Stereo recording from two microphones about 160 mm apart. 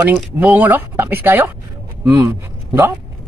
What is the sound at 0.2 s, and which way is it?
A man's voice, 10° right (ahead or behind).